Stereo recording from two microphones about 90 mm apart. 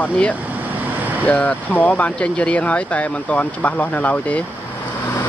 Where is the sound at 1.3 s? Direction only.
15° left (ahead or behind).